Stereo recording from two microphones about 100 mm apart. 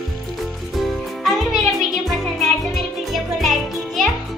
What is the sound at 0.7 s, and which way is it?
Music, centre (ahead or behind).